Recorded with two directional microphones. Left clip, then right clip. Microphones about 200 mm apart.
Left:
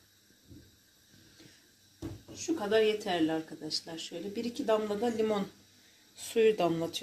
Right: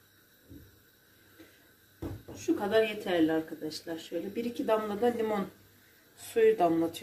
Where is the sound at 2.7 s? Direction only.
30° left (ahead or behind).